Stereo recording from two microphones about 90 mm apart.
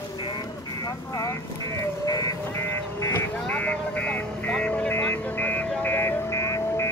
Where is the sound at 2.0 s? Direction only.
45° left (ahead or behind).